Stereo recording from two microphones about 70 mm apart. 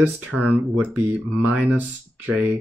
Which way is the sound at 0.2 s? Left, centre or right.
Right.